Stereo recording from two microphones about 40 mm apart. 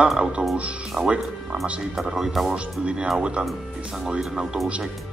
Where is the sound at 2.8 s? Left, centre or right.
Right.